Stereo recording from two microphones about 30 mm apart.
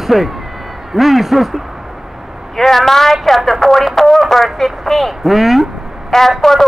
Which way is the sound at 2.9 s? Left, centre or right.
Centre.